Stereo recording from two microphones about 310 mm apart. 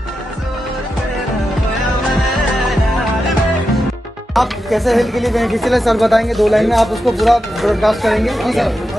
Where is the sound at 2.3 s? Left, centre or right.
Centre.